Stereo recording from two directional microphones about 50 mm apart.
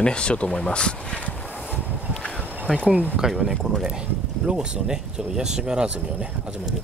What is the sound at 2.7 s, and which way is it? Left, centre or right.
Speech, centre.